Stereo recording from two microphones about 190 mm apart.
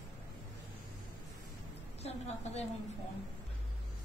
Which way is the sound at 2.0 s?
35° left (ahead or behind).